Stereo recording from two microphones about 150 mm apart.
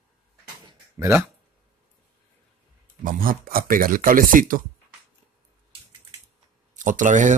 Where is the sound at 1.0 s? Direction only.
20° right (ahead or behind).